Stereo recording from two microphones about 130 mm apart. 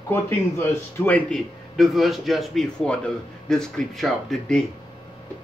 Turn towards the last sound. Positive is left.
turn(degrees=0)  # may be behind; listen again after turning